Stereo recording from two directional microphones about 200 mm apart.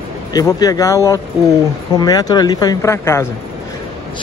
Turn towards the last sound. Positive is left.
turn(degrees=15)  # may be behind; listen again after turning